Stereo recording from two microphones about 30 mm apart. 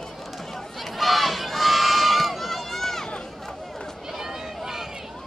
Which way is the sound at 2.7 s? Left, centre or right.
Centre.